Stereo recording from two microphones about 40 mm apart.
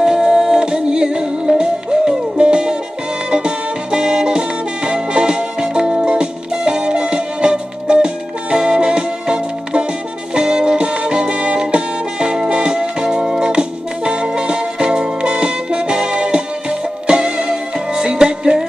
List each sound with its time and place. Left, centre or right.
0.0 s music: centre